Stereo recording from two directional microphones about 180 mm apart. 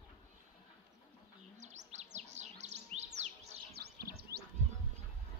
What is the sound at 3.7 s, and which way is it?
Bird, 60° right (ahead or behind).